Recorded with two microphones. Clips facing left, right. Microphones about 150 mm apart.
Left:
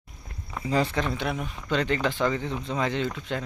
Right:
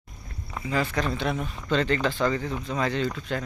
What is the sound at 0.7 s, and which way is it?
Speech, 30° left (ahead or behind).